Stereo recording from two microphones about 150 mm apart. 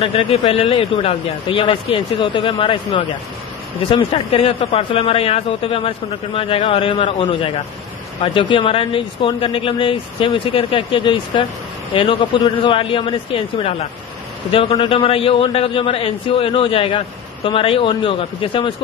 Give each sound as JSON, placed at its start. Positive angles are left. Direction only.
{"t": 0.0, "sound": "speech", "side_deg": 40}